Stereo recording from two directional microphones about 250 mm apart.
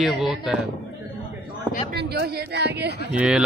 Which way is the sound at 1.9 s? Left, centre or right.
Right.